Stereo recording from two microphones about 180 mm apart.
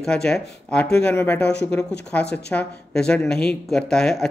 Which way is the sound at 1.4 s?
70° left (ahead or behind).